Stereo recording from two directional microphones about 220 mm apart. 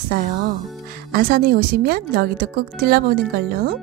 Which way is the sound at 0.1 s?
40° right (ahead or behind).